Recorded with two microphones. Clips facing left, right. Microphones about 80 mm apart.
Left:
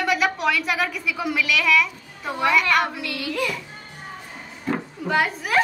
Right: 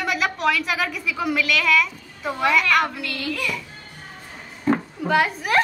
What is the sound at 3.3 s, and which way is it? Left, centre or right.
Speech, left.